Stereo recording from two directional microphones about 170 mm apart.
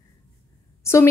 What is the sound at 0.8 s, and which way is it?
Speech, 15° left (ahead or behind).